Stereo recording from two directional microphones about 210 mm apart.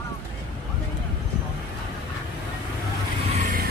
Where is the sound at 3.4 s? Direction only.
40° right (ahead or behind).